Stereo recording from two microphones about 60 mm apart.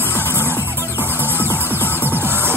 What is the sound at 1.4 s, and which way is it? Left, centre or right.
Music, left.